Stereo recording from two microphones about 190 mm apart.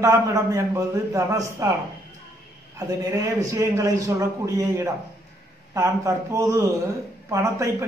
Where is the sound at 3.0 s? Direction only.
15° right (ahead or behind).